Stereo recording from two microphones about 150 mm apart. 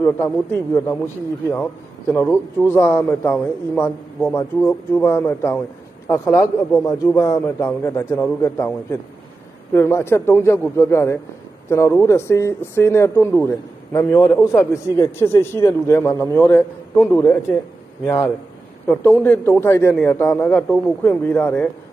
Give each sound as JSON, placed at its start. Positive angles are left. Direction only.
{"t": 0.0, "sound": "a man's voice", "side_deg": 15}